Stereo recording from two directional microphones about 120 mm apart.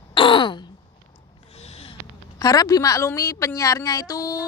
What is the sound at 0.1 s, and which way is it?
Throat clearing, 45° left (ahead or behind).